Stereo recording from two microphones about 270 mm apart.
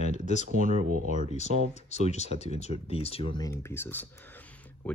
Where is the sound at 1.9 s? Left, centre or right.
Left; by 4.1 s centre.